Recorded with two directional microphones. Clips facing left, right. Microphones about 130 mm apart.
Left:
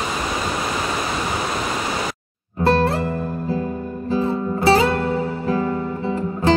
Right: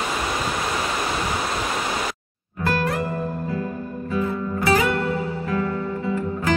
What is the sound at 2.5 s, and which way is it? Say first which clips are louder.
Music: left 6 dB; 30° left (ahead or behind).